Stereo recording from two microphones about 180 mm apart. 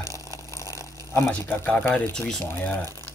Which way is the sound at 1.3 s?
10° left (ahead or behind).